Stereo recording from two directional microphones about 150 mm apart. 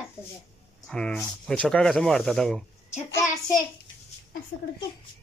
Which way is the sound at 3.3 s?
25° left (ahead or behind).